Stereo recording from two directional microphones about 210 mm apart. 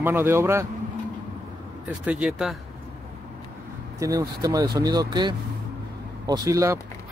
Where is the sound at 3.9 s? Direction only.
15° right (ahead or behind).